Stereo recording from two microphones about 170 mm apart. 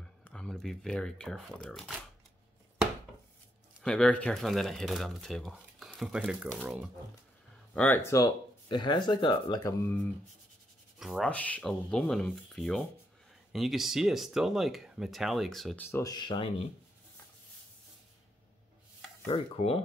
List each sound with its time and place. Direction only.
0.2 s speech: 5° left (ahead or behind)
3.8 s speech: 5° left (ahead or behind)
6.5 s speech: 5° left (ahead or behind)
11.0 s speech: centre (ahead or behind)
15.8 s speech: 15° left (ahead or behind)
19.2 s speech: 35° left (ahead or behind)